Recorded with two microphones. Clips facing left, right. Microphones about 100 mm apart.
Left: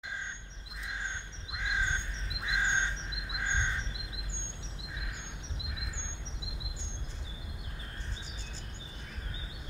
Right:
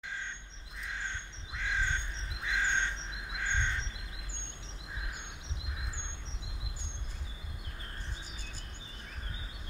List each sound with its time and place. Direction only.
1.5 s crow: 15° left (ahead or behind)